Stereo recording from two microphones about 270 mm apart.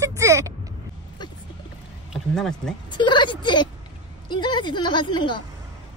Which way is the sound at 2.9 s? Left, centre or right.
Centre.